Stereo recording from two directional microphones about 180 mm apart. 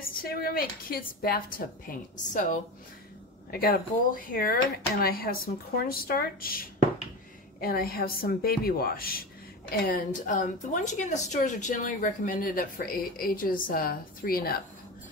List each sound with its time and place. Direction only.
0.1 s speech: 55° left (ahead or behind)
3.5 s a woman's voice: 55° left (ahead or behind)